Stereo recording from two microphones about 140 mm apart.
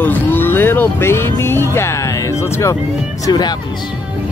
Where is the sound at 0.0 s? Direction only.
15° left (ahead or behind).